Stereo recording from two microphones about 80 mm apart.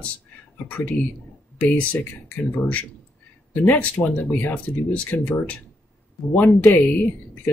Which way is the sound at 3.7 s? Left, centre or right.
Centre.